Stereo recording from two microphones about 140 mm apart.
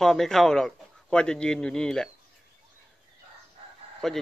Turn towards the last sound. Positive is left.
turn(degrees=5)  # may be behind; listen again after turning